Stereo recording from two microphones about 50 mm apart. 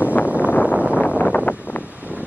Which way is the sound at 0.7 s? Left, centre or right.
Right.